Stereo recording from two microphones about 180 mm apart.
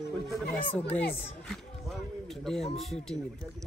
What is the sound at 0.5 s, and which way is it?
Speech, 10° left (ahead or behind).